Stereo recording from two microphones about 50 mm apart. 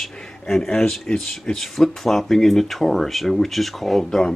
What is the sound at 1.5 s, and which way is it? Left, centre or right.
Speech, centre.